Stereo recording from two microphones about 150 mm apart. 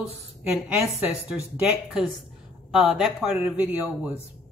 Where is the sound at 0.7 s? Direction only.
10° right (ahead or behind).